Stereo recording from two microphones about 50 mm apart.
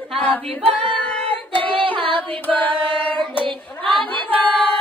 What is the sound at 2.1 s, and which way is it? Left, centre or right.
Carnatic music, left.